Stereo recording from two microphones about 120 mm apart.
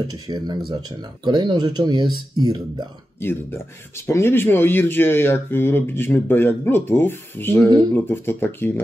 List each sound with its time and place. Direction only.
0.1 s speech: 35° right (ahead or behind)
3.2 s speech: 20° left (ahead or behind)